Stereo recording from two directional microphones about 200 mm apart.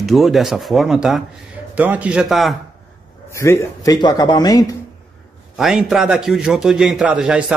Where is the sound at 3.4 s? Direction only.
15° left (ahead or behind).